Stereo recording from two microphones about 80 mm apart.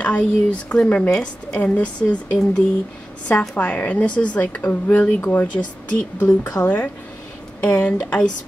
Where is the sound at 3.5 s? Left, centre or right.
Centre.